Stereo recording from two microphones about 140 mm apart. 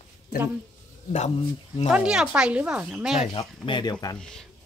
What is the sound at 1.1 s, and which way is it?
Speech, 55° left (ahead or behind).